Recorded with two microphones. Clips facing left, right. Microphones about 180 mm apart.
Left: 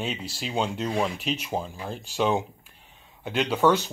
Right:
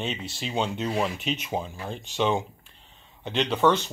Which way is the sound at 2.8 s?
5° left (ahead or behind).